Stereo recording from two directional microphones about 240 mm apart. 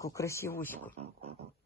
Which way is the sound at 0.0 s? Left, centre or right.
Centre.